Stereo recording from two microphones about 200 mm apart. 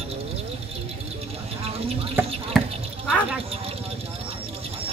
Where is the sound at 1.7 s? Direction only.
30° right (ahead or behind).